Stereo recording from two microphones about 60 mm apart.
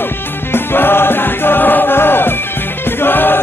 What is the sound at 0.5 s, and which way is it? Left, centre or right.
Music, left.